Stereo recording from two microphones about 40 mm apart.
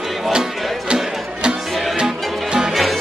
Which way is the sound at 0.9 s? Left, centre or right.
Right.